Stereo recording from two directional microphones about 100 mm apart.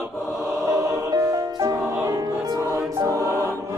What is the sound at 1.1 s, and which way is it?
Music, 35° right (ahead or behind).